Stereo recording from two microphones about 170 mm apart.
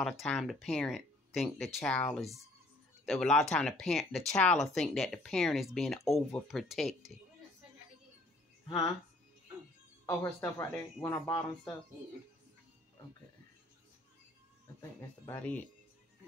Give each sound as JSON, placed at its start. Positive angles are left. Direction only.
{"t": 0.0, "sound": "speech", "side_deg": 5}
{"t": 8.6, "sound": "speech", "side_deg": 20}
{"t": 10.0, "sound": "speech", "side_deg": 15}
{"t": 11.3, "sound": "speech", "side_deg": 25}
{"t": 14.8, "sound": "speech", "side_deg": 15}